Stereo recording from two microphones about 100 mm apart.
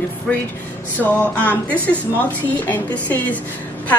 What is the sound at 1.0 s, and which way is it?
A woman's voice, 15° left (ahead or behind).